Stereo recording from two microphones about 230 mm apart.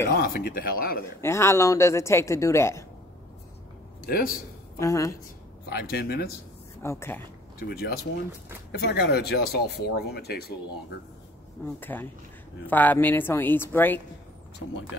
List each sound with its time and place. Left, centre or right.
0.0 s speech: left
1.2 s speech: centre
4.1 s speech: left
4.7 s speech: centre
5.7 s speech: left
6.8 s speech: centre
7.5 s speech: left
11.6 s speech: centre